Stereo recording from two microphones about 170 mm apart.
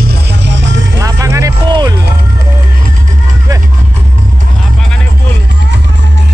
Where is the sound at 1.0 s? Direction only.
20° right (ahead or behind).